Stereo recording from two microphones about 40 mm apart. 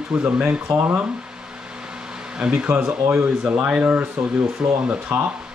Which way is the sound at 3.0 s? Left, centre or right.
Right.